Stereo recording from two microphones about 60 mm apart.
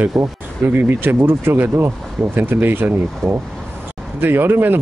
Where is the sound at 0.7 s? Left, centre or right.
Right.